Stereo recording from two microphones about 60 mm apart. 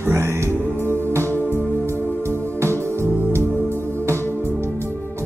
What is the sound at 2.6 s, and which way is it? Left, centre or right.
Music, right.